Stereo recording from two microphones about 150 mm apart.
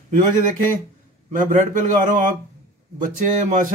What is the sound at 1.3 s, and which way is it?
Speech, 60° right (ahead or behind).